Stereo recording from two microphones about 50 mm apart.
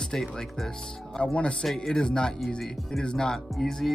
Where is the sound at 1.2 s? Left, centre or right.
Left.